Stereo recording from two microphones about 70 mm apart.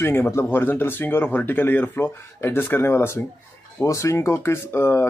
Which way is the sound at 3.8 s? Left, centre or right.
Left.